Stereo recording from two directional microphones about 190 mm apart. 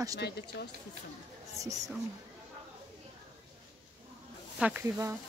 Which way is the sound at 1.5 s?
15° right (ahead or behind).